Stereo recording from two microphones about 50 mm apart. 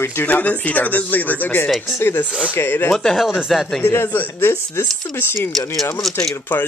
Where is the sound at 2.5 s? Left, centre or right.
Left.